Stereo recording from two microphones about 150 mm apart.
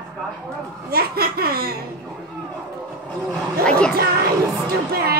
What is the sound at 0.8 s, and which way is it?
Laughter, 90° right.